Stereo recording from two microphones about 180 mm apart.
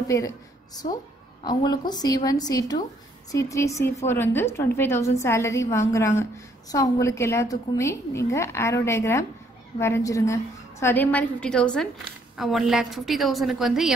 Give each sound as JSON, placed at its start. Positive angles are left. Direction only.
{"t": 0.1, "sound": "a woman's voice", "side_deg": 15}
{"t": 1.4, "sound": "a woman's voice", "side_deg": 25}